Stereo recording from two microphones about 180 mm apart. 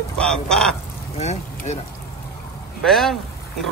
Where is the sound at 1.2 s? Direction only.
35° left (ahead or behind).